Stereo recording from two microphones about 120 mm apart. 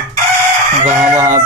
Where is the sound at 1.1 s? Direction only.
25° right (ahead or behind).